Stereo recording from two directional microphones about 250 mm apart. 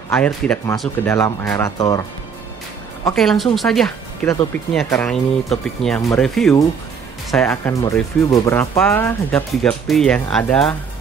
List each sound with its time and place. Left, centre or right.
0.1 s speech: centre
3.2 s speech: centre